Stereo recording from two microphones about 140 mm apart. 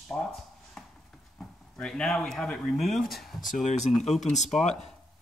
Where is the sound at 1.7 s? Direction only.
5° left (ahead or behind).